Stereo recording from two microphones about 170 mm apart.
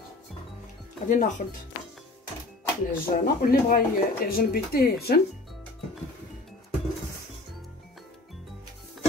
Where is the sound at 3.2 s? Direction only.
55° left (ahead or behind).